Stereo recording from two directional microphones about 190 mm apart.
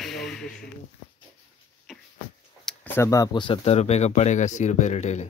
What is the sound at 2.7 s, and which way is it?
Speech, 10° left (ahead or behind).